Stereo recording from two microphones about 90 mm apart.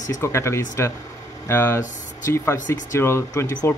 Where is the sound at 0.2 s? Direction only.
30° left (ahead or behind).